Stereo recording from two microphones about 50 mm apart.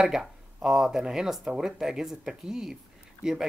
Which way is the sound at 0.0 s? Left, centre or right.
Centre.